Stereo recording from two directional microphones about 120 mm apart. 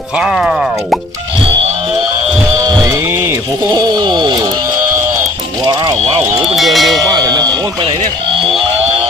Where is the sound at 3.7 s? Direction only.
40° right (ahead or behind).